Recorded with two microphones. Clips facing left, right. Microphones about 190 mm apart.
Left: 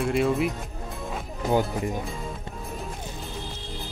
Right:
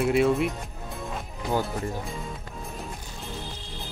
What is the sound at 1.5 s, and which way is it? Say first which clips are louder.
Speech: left 3 dB; 15° left (ahead or behind).